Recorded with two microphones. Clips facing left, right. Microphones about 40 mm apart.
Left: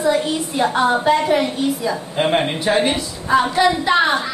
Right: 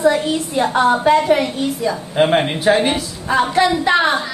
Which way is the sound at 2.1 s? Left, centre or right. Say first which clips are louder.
Right 4 dB; centre.